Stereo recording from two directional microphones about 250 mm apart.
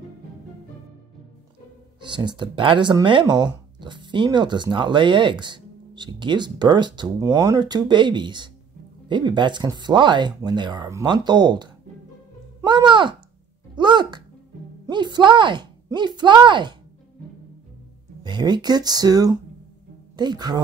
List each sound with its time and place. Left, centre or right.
2.0 s speech: centre
13.7 s music: centre
14.9 s speech: centre
18.2 s speech: centre